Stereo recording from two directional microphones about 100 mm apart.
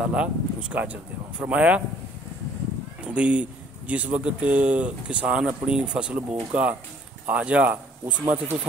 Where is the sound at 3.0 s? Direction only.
10° right (ahead or behind).